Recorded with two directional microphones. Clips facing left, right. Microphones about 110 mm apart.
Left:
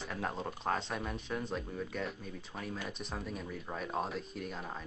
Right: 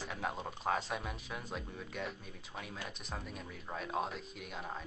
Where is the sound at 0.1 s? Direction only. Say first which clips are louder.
Left 3 dB; 5° right (ahead or behind).